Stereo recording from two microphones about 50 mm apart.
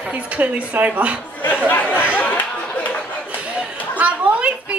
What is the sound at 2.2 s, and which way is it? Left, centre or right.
Chatter, left.